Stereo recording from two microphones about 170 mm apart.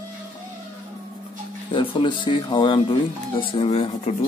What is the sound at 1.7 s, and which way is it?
Speech, 30° left (ahead or behind).